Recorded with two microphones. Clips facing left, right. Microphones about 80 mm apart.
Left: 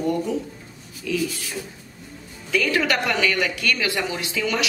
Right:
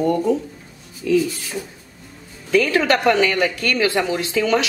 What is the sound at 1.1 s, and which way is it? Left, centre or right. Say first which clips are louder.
Speech: right 9 dB; right.